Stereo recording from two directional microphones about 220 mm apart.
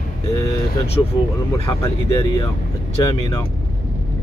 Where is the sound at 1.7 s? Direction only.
15° left (ahead or behind).